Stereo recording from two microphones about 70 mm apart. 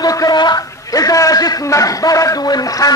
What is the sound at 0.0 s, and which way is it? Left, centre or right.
A man's voice, left.